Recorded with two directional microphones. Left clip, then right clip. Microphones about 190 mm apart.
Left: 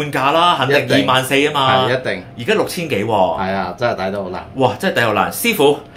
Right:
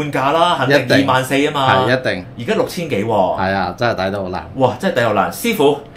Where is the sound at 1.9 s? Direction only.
45° right (ahead or behind).